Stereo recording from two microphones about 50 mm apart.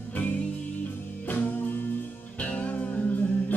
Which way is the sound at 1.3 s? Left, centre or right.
Left.